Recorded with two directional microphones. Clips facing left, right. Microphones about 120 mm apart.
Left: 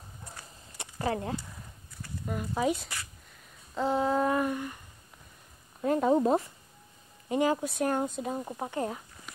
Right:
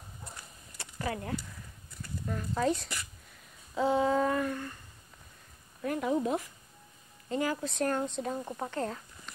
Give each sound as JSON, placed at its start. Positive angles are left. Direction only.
{"t": 0.7, "sound": "a sound", "side_deg": 30}
{"t": 2.2, "sound": "speech", "side_deg": 10}
{"t": 3.7, "sound": "a sound", "side_deg": 0}
{"t": 4.3, "sound": "speech", "side_deg": 15}
{"t": 5.8, "sound": "speech", "side_deg": 30}
{"t": 7.2, "sound": "speech", "side_deg": 20}
{"t": 7.6, "sound": "speech", "side_deg": 10}